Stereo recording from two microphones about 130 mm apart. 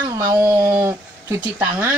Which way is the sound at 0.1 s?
25° right (ahead or behind).